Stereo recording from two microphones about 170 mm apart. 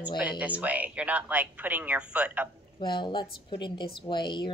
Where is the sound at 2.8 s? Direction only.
25° left (ahead or behind).